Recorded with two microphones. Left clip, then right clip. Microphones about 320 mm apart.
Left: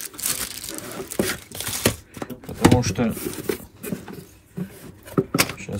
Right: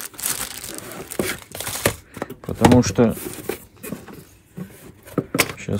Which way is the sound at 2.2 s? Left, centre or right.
Centre.